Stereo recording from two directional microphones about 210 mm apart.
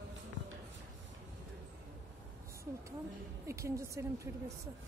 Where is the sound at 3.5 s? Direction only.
15° right (ahead or behind).